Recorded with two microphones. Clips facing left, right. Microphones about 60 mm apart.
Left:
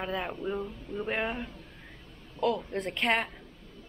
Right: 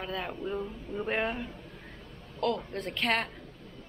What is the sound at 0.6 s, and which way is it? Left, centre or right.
A woman's voice, centre.